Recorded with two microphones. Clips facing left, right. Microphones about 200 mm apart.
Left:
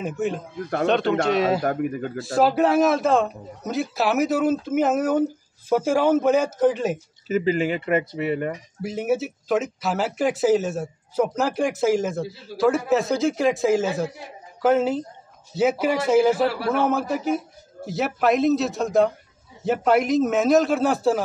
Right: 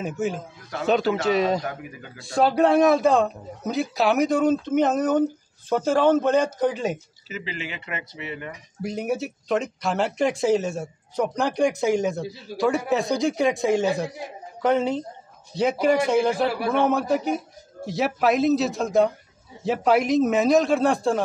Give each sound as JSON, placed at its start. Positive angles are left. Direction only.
{"t": 0.0, "sound": "speech", "side_deg": 0}
{"t": 1.6, "sound": "speech", "side_deg": 55}
{"t": 2.1, "sound": "a man's voice", "side_deg": 0}
{"t": 7.2, "sound": "speech", "side_deg": 45}
{"t": 8.8, "sound": "speech", "side_deg": 0}